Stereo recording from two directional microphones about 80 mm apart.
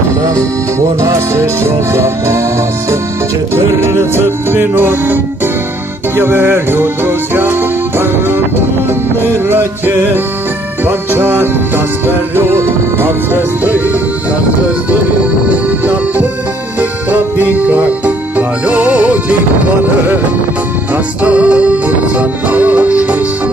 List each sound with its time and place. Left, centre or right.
1.0 s music: right
3.5 s music: right
9.2 s music: right
15.8 s music: right
21.2 s music: centre